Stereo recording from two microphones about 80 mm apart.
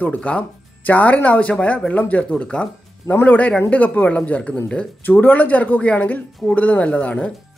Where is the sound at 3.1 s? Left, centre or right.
Left.